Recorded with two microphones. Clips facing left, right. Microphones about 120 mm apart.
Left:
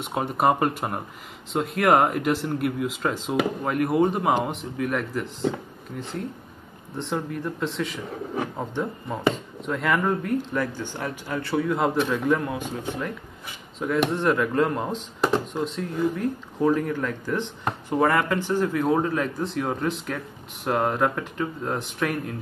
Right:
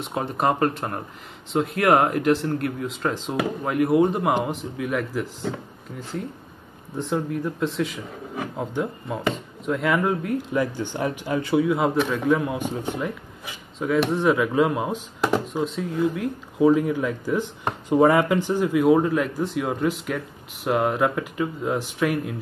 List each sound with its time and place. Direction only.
0.0 s speech: centre (ahead or behind)
7.0 s speech: centre (ahead or behind)
12.4 s speech: 20° right (ahead or behind)
13.8 s speech: centre (ahead or behind)